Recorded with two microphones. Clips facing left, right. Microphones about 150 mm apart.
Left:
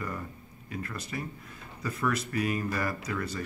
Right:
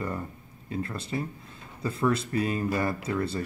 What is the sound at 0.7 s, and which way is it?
Speech, 30° right (ahead or behind).